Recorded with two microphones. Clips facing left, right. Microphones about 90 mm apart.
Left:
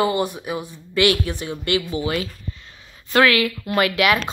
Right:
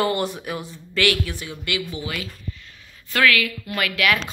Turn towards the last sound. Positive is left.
turn(degrees=25)  # may be behind; listen again after turning